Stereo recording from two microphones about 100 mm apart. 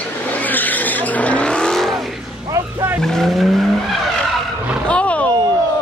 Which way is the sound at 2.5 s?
25° right (ahead or behind).